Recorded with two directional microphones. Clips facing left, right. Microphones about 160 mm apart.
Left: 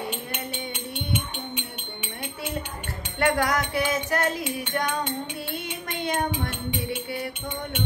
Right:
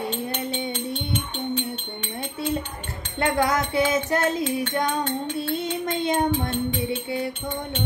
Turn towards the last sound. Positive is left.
turn(degrees=-25)  # may be behind; listen again after turning